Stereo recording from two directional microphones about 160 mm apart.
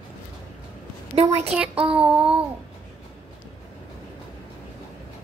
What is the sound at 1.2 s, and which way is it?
Speech, 40° right (ahead or behind).